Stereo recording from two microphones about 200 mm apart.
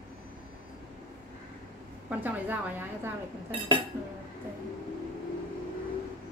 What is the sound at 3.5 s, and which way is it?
Speech, 25° right (ahead or behind).